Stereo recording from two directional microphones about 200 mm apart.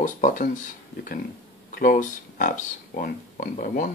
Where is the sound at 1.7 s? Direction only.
45° left (ahead or behind).